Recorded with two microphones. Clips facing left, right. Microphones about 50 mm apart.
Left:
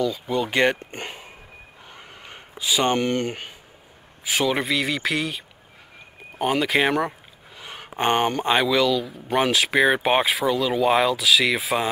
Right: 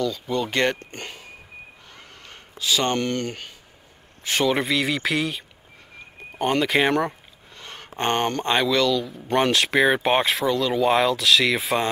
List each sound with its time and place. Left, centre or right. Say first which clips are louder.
0.0 s speech: left 1 dB; centre
1.9 s a sound: left 2 dB; centre
4.2 s speech: right 1 dB; centre